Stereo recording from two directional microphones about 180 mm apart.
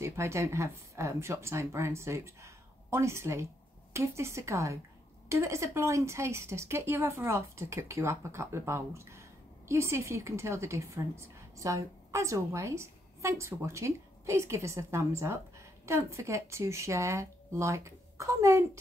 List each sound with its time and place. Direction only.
0.0 s a woman's voice: 15° right (ahead or behind)